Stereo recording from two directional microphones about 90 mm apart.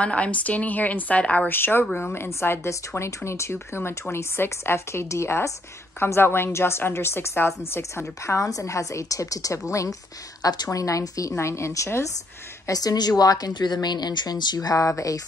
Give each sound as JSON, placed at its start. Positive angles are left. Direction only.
{"t": 0.0, "sound": "a woman's voice", "side_deg": 15}
{"t": 1.5, "sound": "a woman's voice", "side_deg": 25}
{"t": 10.4, "sound": "a woman's voice", "side_deg": 45}
{"t": 12.6, "sound": "speech", "side_deg": 45}
{"t": 13.5, "sound": "speech", "side_deg": 55}